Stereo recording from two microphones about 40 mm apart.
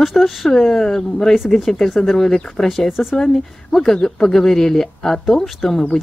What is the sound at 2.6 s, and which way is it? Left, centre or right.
Speech, centre.